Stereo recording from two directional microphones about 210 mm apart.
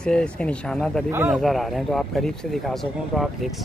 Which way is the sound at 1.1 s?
10° right (ahead or behind).